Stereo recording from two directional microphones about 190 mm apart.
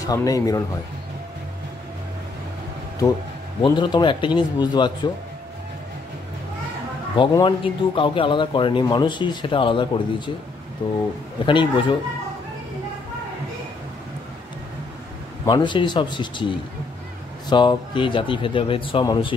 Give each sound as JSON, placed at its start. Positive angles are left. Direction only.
{"t": 0.0, "sound": "speech", "side_deg": 15}
{"t": 3.6, "sound": "speech", "side_deg": 25}
{"t": 7.2, "sound": "speech", "side_deg": 25}
{"t": 11.4, "sound": "speech", "side_deg": 25}
{"t": 15.4, "sound": "speech", "side_deg": 25}